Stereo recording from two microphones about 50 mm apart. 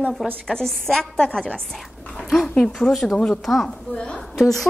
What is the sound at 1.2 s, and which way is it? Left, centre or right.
A woman's voice, centre.